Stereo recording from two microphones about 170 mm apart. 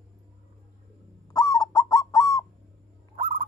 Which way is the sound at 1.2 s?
20° left (ahead or behind).